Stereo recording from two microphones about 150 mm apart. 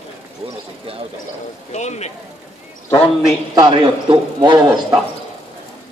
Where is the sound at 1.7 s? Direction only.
50° left (ahead or behind).